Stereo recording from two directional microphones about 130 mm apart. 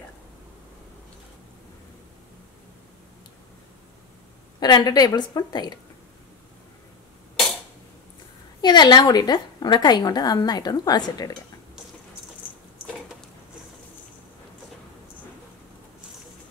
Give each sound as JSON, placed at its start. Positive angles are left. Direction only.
{"t": 4.6, "sound": "a woman's voice", "side_deg": 30}
{"t": 8.5, "sound": "a woman's voice", "side_deg": 35}